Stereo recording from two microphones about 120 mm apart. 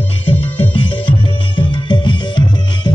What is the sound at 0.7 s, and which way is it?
Music, 45° left (ahead or behind).